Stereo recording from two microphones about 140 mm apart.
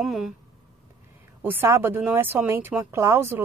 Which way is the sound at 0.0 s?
Centre (ahead or behind).